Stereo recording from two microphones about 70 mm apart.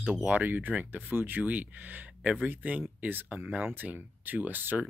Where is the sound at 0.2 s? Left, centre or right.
Right.